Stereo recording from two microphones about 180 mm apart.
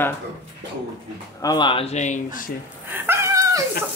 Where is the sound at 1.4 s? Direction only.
25° left (ahead or behind); by 2.5 s 50° left (ahead or behind).